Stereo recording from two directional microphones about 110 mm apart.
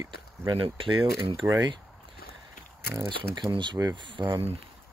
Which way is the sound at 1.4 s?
30° right (ahead or behind).